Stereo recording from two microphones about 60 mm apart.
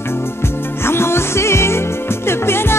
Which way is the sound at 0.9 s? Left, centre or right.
Left.